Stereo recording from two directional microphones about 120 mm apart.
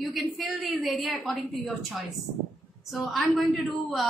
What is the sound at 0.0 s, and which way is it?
A woman's voice, centre (ahead or behind).